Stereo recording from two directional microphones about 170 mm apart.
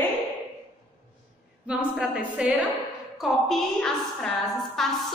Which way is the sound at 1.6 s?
5° right (ahead or behind).